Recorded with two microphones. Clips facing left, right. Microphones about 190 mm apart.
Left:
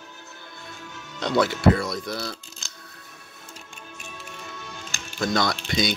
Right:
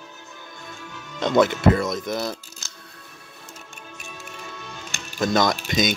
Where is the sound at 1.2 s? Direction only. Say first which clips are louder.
Right 3 dB; 20° right (ahead or behind).